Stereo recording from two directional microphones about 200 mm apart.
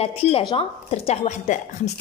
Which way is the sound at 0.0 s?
30° left (ahead or behind).